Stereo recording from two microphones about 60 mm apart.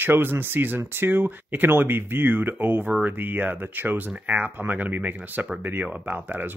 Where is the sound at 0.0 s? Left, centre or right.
Right.